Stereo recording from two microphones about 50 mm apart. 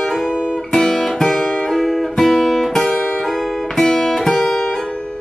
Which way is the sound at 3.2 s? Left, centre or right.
Centre.